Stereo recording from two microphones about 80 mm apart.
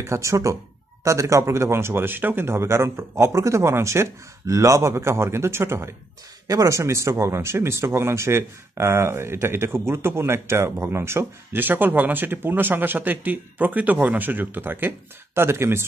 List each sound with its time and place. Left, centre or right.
0.0 s speech: right
6.4 s speech: right